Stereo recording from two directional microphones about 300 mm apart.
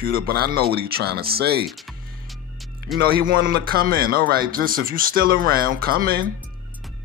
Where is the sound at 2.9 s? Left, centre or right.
Right.